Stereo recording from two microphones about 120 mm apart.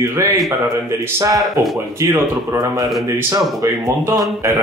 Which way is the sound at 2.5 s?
30° right (ahead or behind).